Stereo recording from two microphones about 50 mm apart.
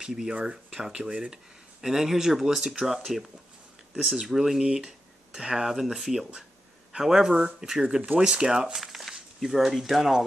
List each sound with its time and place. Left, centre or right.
0.0 s speech: centre
8.7 s speech: centre